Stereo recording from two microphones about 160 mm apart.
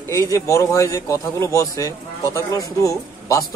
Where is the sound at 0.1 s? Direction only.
20° left (ahead or behind).